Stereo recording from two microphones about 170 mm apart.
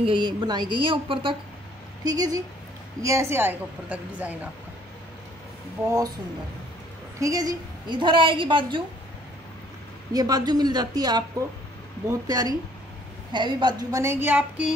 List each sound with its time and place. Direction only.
0.0 s a woman's voice: 30° right (ahead or behind); by 4.4 s 10° right (ahead or behind)
7.2 s a woman's voice: 20° right (ahead or behind)
10.1 s a woman's voice: 20° right (ahead or behind)